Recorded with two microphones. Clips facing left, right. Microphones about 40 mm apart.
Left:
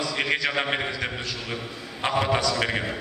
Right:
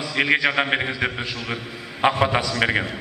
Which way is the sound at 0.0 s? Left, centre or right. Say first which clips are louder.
Right 5 dB; centre.